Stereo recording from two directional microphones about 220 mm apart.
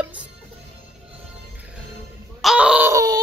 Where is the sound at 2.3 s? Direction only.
Centre (ahead or behind).